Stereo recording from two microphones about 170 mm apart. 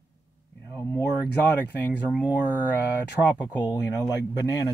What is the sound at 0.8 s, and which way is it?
Speech, 15° left (ahead or behind).